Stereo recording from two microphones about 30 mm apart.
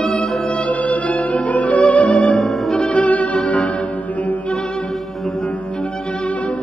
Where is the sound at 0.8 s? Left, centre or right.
Left.